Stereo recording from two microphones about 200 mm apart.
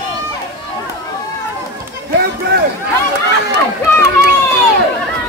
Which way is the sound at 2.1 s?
55° right (ahead or behind).